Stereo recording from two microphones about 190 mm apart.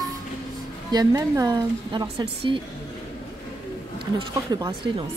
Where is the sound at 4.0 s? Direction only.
20° right (ahead or behind).